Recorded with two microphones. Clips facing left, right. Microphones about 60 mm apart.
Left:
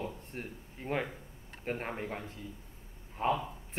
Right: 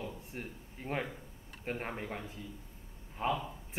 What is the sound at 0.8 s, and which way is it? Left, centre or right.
Speech, left.